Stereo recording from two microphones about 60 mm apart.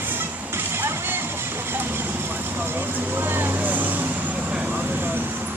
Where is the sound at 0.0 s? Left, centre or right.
Right.